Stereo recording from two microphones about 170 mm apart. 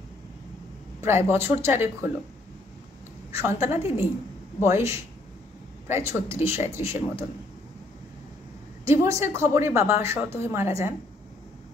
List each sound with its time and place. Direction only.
1.0 s a woman's voice: 15° right (ahead or behind)
3.3 s a woman's voice: 15° right (ahead or behind)
3.8 s a woman's voice: 35° left (ahead or behind)
4.6 s a woman's voice: 15° right (ahead or behind)
8.8 s a woman's voice: 15° right (ahead or behind)